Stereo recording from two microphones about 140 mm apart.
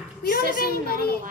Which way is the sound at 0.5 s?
90° left.